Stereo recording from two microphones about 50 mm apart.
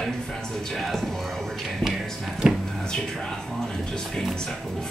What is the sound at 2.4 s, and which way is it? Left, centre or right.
Speech, centre.